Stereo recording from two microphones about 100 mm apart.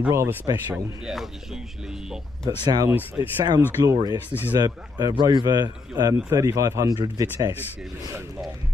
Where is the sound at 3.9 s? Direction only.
40° right (ahead or behind).